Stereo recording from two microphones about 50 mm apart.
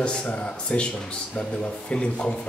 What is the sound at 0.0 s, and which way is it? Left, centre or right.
Speech, left.